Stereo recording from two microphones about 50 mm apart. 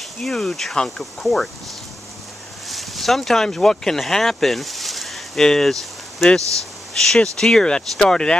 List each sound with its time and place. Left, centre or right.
0.2 s speech: centre
2.7 s speech: centre